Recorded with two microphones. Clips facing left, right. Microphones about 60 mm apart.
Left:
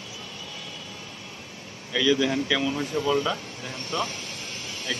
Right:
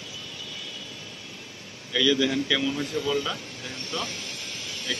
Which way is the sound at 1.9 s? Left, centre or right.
Centre.